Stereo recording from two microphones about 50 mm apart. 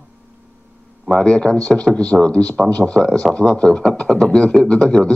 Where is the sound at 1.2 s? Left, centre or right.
Centre.